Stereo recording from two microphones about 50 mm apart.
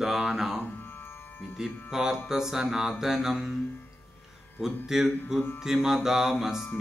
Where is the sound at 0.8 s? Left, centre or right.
Left.